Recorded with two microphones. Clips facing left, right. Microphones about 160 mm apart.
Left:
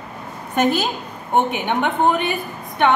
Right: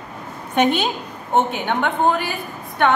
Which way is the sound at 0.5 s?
5° left (ahead or behind).